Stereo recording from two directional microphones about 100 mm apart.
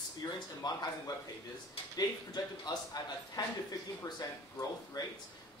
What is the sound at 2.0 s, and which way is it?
Speech, 40° left (ahead or behind).